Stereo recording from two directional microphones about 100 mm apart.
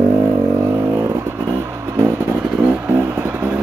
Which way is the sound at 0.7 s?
20° right (ahead or behind).